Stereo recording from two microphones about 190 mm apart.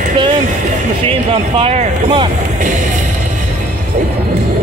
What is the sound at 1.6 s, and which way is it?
Speech, 30° right (ahead or behind).